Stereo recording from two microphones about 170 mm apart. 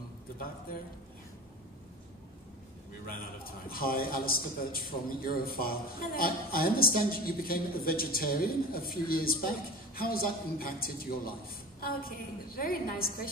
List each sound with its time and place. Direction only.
3.6 s a man's voice: 60° left (ahead or behind)